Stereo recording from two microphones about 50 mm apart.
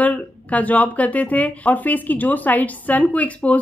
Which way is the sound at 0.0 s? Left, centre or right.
Left.